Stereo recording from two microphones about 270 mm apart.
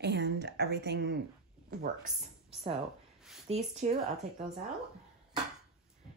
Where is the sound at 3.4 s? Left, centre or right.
Right.